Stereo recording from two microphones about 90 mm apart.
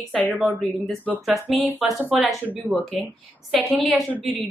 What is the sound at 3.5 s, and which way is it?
Speech, centre (ahead or behind).